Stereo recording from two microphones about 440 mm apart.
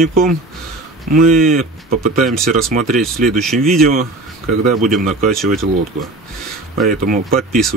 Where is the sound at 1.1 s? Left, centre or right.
Centre.